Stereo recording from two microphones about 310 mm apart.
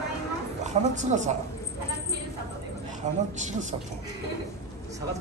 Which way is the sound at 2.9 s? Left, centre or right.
Right.